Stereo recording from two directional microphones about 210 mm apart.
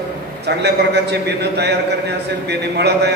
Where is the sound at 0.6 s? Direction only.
50° right (ahead or behind).